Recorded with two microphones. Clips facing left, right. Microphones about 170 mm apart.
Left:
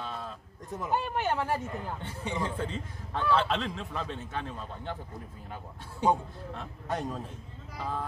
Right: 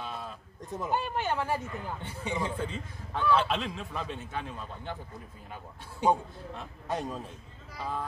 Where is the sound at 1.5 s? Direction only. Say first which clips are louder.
Left 1 dB; 10° right (ahead or behind).